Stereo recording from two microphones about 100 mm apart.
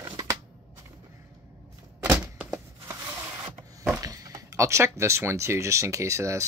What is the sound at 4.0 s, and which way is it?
Speech, 35° right (ahead or behind).